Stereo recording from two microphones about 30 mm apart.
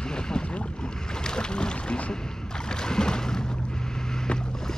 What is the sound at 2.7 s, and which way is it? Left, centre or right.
Boat, left.